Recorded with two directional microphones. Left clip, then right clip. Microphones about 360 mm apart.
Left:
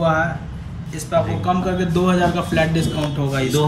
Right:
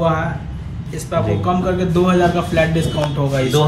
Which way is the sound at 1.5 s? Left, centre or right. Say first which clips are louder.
Right 2 dB; centre.